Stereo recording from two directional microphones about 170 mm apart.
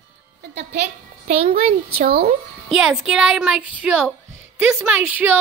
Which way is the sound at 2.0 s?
60° right (ahead or behind).